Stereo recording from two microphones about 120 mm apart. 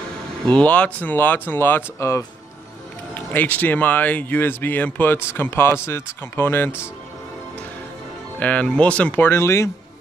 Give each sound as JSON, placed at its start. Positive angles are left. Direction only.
{"t": 0.5, "sound": "speech", "side_deg": 10}
{"t": 8.4, "sound": "speech", "side_deg": 10}